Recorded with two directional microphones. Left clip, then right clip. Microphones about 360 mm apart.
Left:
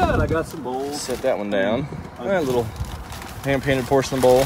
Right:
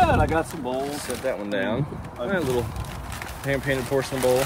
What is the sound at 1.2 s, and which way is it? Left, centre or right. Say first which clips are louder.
Speech: left 6 dB; centre.